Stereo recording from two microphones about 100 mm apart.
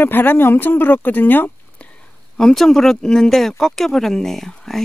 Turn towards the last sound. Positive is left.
turn(degrees=5)  # may be behind; listen again after turning